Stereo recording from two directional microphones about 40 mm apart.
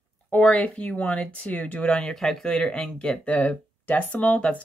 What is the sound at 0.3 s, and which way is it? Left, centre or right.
Speech, left.